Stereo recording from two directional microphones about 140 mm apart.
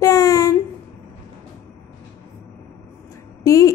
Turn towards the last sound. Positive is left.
turn(degrees=25)  # may be behind; listen again after turning